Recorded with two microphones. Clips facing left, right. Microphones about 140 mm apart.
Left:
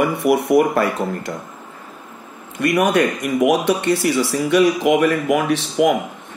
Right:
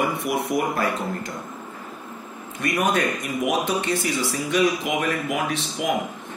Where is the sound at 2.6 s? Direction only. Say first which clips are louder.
Left 6 dB; 70° left (ahead or behind).